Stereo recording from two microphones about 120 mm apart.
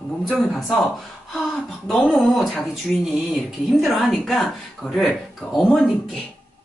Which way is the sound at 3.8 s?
Centre (ahead or behind).